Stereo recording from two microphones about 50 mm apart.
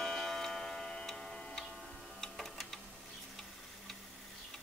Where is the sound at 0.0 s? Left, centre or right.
Centre.